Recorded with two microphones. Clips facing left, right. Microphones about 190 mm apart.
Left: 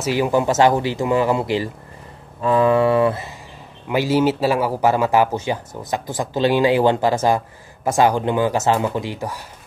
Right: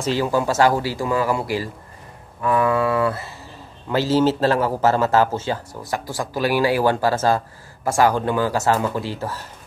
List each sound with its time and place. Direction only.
0.0 s a man's voice: 15° left (ahead or behind)